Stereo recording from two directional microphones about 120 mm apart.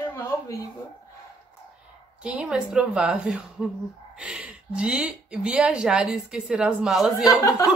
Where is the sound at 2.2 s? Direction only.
5° right (ahead or behind).